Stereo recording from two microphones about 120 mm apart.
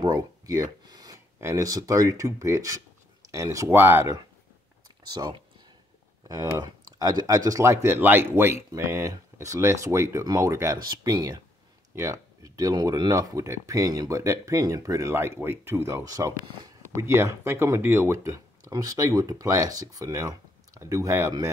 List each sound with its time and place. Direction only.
0.0 s speech: 30° right (ahead or behind); by 4.1 s 15° right (ahead or behind)
5.0 s speech: 35° right (ahead or behind)